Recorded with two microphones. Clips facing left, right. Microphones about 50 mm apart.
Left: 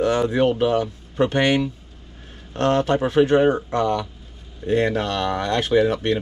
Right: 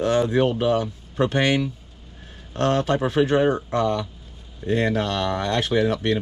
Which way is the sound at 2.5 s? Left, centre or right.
Left.